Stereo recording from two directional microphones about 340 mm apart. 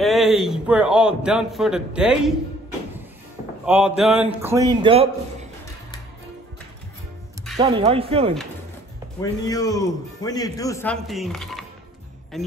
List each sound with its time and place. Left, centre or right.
0.0 s a man's voice: centre
3.6 s a man's voice: centre
7.5 s a man's voice: centre
9.2 s a man's voice: centre